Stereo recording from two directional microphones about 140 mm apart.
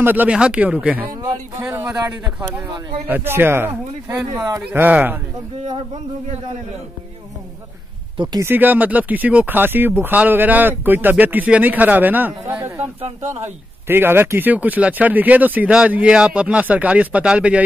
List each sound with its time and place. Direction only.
0.0 s speech: 10° right (ahead or behind)
8.4 s speech: 15° right (ahead or behind)
13.0 s speech: 55° right (ahead or behind)
13.8 s speech: 15° right (ahead or behind)